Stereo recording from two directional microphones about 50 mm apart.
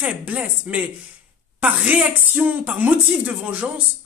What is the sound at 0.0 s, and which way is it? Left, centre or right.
Speech, right.